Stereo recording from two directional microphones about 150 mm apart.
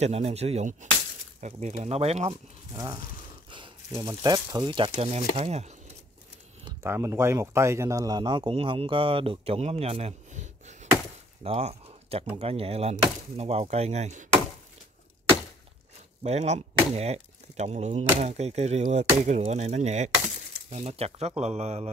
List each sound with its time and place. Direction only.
0.0 s speech: 45° right (ahead or behind)
2.7 s speech: 25° right (ahead or behind)
3.4 s a sound: 35° right (ahead or behind)
4.0 s speech: 25° right (ahead or behind); by 5.7 s 45° right (ahead or behind)
6.8 s speech: 15° right (ahead or behind); by 14.2 s 50° right (ahead or behind)
16.2 s speech: 45° right (ahead or behind)